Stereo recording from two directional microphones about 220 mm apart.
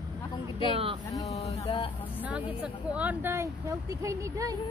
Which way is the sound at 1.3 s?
30° left (ahead or behind).